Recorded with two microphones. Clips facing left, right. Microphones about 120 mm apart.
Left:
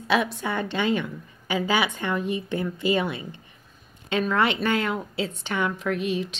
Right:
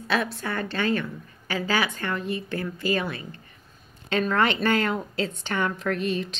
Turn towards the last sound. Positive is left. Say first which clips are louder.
# even
turn(degrees=10)  # may be behind; listen again after turning